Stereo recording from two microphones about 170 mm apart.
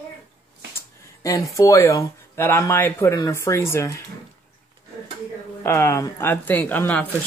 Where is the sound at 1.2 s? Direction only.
20° left (ahead or behind).